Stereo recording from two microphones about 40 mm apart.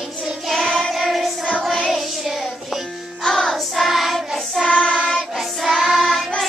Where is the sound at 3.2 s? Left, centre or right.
Centre.